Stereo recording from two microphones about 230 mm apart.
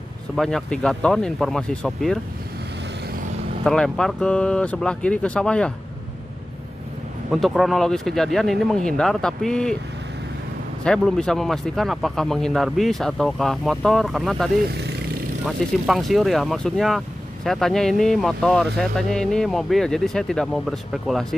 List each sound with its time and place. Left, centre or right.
0.4 s speech: centre
3.6 s speech: centre
7.2 s speech: centre
10.8 s speech: centre
14.7 s vehicle: right
15.4 s speech: centre